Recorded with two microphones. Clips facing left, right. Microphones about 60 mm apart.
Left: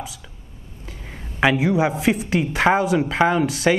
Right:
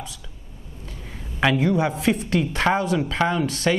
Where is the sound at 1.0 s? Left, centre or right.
Centre.